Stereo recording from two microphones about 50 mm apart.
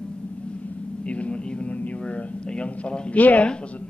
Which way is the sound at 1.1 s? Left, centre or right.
Left.